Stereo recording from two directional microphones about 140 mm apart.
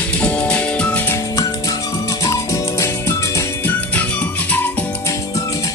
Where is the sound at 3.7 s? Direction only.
10° left (ahead or behind).